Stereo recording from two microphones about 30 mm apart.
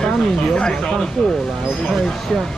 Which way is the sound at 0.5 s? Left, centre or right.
Left.